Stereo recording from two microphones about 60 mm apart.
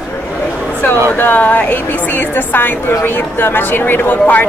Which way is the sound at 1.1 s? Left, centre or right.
Left.